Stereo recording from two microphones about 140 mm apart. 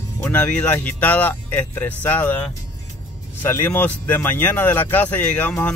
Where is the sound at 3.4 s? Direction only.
15° left (ahead or behind).